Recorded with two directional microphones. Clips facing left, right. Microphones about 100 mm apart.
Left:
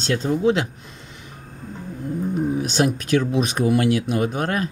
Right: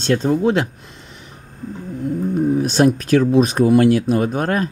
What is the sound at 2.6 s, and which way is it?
Speech, 40° right (ahead or behind).